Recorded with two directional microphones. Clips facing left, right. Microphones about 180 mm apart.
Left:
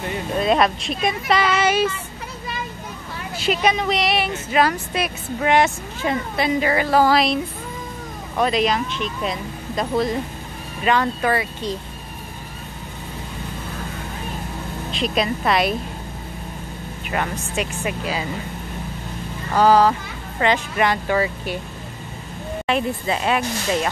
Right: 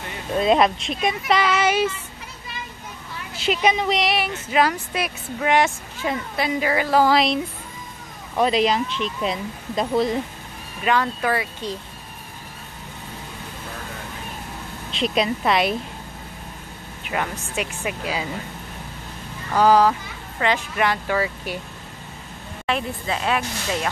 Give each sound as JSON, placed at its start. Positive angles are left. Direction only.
{"t": 0.4, "sound": "speech", "side_deg": -20}
{"t": 3.3, "sound": "speech", "side_deg": -20}
{"t": 7.1, "sound": "speech", "side_deg": -20}
{"t": 8.4, "sound": "speech", "side_deg": -25}
{"t": 10.9, "sound": "speech", "side_deg": -5}
{"t": 14.9, "sound": "speech", "side_deg": -25}
{"t": 17.1, "sound": "speech", "side_deg": -5}
{"t": 19.6, "sound": "speech", "side_deg": -10}
{"t": 19.9, "sound": "speech", "side_deg": 0}
{"t": 22.7, "sound": "speech", "side_deg": 5}